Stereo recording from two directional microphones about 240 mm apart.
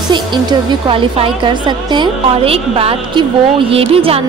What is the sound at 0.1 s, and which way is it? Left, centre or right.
A woman's voice, centre.